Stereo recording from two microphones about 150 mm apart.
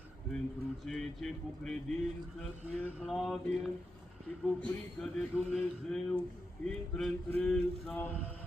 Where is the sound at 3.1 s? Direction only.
Centre (ahead or behind).